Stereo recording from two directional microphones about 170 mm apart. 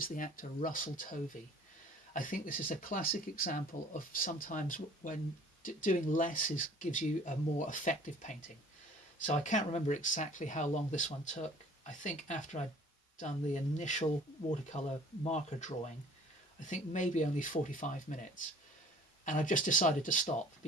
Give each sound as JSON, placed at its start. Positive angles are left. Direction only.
{"t": 0.0, "sound": "speech", "side_deg": 55}
{"t": 19.2, "sound": "speech", "side_deg": 50}